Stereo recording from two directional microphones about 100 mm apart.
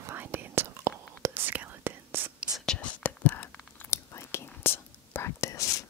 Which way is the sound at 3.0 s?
15° left (ahead or behind).